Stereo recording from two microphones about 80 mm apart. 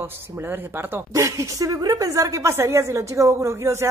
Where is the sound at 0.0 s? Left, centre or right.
Right.